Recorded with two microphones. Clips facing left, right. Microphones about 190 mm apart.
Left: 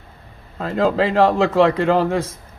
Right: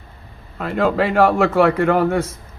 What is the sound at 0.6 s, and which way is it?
A man's voice, 25° left (ahead or behind).